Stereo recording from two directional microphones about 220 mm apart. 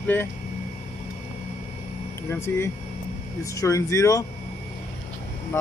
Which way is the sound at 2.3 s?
10° left (ahead or behind).